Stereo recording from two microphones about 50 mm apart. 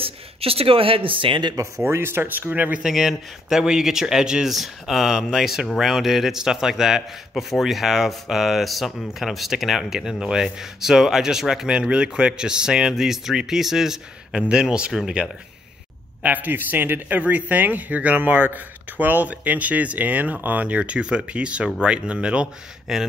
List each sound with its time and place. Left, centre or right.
1.5 s speech: right
2.5 s speech: right
2.8 s a man's voice: centre
16.2 s speech: right
17.2 s speech: right
22.9 s speech: centre